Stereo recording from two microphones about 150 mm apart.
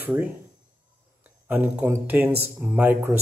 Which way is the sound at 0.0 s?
10° right (ahead or behind).